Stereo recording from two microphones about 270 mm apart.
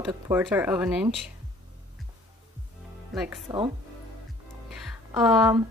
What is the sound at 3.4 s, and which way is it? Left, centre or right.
Speech, centre.